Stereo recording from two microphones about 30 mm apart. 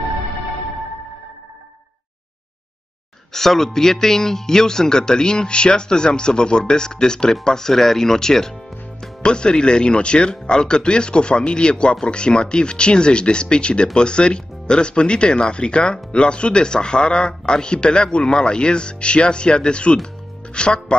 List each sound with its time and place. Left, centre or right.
3.3 s speech: centre
9.2 s speech: left